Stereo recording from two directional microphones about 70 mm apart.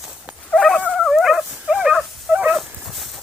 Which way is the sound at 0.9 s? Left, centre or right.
Centre.